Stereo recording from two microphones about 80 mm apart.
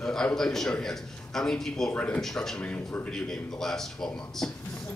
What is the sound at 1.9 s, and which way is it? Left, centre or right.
Speech, centre.